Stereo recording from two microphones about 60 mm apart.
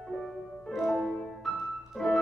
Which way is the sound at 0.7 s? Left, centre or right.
Centre.